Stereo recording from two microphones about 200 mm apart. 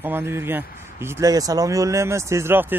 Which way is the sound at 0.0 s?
10° right (ahead or behind).